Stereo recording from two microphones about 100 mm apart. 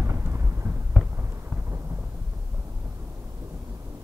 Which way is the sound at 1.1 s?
25° right (ahead or behind).